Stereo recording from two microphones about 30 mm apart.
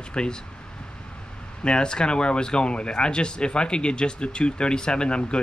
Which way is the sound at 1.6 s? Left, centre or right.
Left.